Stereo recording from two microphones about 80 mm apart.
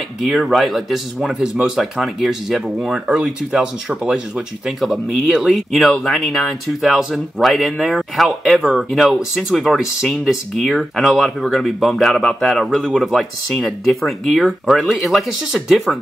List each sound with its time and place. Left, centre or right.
0.2 s speech: centre